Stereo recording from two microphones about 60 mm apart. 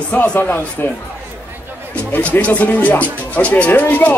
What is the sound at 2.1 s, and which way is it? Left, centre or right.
Speech, left.